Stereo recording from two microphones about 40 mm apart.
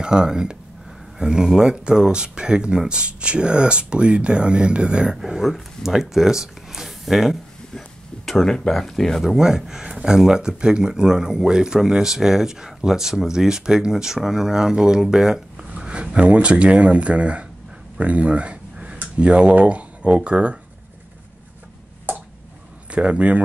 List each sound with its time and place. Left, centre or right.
0.0 s speech: centre
5.4 s speech: centre
8.6 s speech: centre
9.2 s speech: centre
15.7 s speech: right
17.9 s a sound: right
19.1 s speech: right
22.8 s speech: right